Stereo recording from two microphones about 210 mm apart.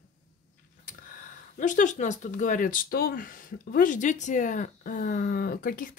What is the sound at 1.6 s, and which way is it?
Speech, 35° left (ahead or behind).